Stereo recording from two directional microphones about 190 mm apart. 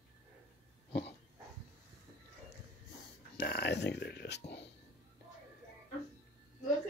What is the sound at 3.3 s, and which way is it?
Speech, 55° left (ahead or behind).